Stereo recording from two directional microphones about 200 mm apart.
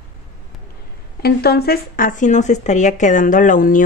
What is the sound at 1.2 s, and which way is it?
Speech, 50° left (ahead or behind).